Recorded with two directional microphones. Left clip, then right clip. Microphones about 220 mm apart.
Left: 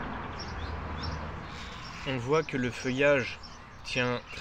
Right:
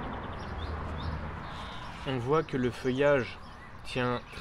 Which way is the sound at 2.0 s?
15° right (ahead or behind).